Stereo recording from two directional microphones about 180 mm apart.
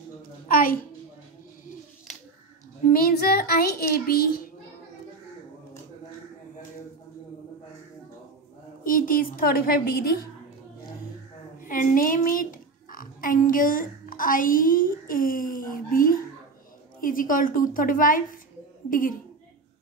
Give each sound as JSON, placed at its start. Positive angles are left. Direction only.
{"t": 0.5, "sound": "a woman's voice", "side_deg": 50}
{"t": 2.9, "sound": "a child's voice", "side_deg": 55}
{"t": 8.8, "sound": "a woman's voice", "side_deg": 50}
{"t": 11.6, "sound": "a woman's voice", "side_deg": 50}